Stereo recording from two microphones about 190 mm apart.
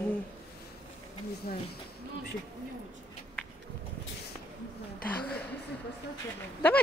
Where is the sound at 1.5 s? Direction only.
50° left (ahead or behind).